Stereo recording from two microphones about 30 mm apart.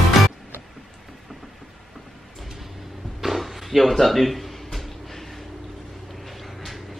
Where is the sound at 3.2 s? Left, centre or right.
Centre.